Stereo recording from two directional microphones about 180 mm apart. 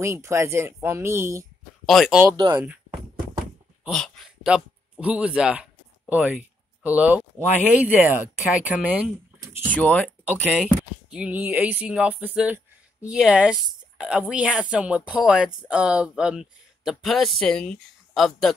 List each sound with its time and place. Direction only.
0.0 s speech: 15° right (ahead or behind)
1.9 s speech: centre (ahead or behind)
2.2 s speech: 20° right (ahead or behind)
3.8 s speech: centre (ahead or behind)
9.7 s speech: 5° left (ahead or behind)
10.5 s speech: 5° right (ahead or behind)